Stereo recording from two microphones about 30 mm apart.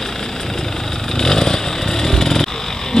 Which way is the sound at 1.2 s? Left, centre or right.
Left.